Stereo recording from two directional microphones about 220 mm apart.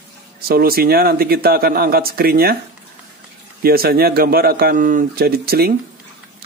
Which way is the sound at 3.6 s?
45° right (ahead or behind).